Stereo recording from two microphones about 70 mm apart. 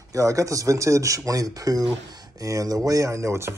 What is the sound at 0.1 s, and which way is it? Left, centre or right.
Speech, right.